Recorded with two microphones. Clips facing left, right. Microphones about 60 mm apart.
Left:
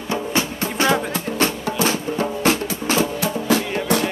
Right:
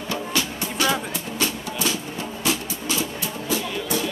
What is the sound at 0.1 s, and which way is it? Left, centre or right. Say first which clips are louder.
Music: left 4 dB; left.